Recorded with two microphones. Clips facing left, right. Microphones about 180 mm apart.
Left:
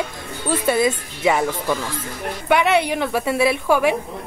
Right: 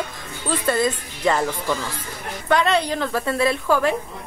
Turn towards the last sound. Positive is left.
turn(degrees=10)  # may be behind; listen again after turning